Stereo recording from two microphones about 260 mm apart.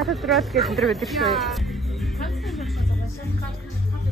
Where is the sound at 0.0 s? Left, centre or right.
Centre.